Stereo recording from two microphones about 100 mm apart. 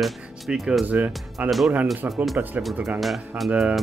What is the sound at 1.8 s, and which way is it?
Speech, centre (ahead or behind).